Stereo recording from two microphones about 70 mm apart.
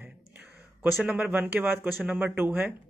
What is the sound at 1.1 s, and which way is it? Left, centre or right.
Speech, centre.